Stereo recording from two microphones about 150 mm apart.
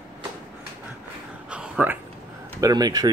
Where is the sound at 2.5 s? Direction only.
25° right (ahead or behind).